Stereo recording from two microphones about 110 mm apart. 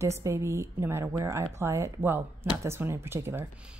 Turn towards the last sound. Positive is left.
turn(degrees=-20)  # may be behind; listen again after turning